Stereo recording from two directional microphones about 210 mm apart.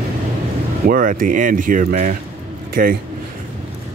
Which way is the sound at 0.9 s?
40° right (ahead or behind).